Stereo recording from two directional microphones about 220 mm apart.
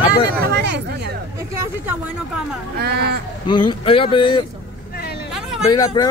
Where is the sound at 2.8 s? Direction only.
45° right (ahead or behind).